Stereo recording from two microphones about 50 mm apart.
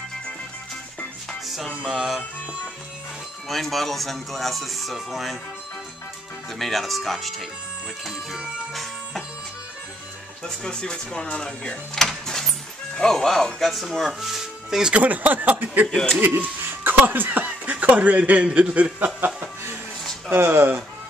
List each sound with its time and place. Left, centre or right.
1.8 s music: centre
3.4 s speech: centre
6.6 s speech: centre
10.4 s speech: centre
12.0 s a sound: centre
12.9 s speech: centre
14.9 s speech: right
20.2 s speech: right